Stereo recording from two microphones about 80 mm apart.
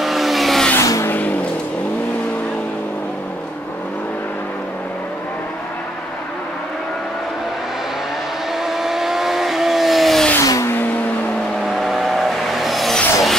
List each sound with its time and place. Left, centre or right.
0.0 s vehicle: centre
0.7 s vehicle: left
1.1 s vehicle: left
8.6 s vehicle: centre
10.4 s vehicle: left
11.6 s vehicle: centre